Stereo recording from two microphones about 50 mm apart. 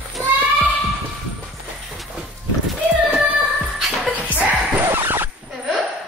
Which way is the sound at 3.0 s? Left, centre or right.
Right.